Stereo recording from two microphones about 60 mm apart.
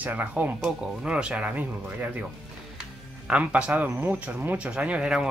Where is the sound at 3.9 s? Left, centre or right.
Right.